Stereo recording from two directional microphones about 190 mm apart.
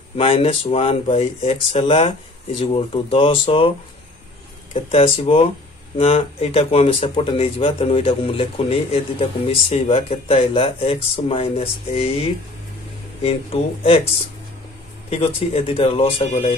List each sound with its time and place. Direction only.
0.2 s speech: 30° left (ahead or behind)
4.7 s speech: 30° left (ahead or behind)
15.0 s speech: 30° left (ahead or behind)